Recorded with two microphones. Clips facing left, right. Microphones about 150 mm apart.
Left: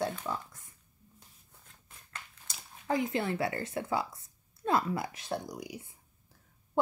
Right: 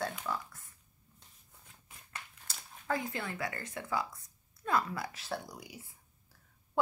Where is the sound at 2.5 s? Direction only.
20° left (ahead or behind).